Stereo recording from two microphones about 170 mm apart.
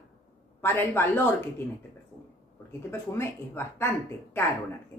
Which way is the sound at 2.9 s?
15° left (ahead or behind).